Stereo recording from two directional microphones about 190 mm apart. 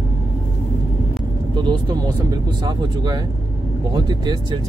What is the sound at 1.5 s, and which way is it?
Speech, 25° right (ahead or behind).